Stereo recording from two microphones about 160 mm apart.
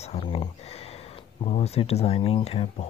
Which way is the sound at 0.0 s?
40° left (ahead or behind).